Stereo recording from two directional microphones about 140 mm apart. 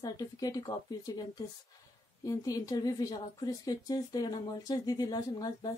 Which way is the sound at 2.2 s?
25° left (ahead or behind).